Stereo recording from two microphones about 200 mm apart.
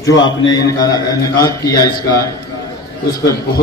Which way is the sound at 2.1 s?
15° left (ahead or behind).